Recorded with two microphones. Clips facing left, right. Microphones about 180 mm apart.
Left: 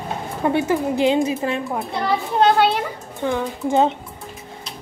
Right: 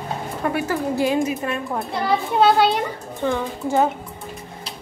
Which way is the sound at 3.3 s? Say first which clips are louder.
Left 2 dB; 20° left (ahead or behind).